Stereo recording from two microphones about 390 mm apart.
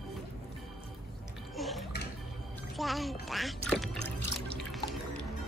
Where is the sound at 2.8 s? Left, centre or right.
Centre.